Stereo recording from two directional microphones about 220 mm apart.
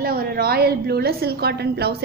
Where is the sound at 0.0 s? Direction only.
45° right (ahead or behind).